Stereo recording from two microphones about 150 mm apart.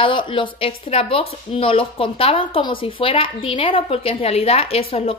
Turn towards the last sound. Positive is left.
turn(degrees=40)  # may be behind; listen again after turning